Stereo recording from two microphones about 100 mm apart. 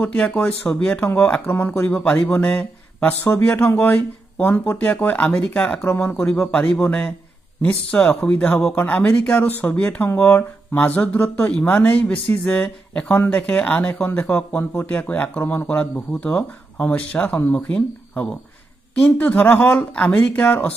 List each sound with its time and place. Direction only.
0.0 s speech: 15° left (ahead or behind)